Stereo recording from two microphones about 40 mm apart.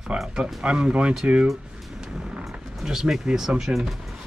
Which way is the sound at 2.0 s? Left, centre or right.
Centre.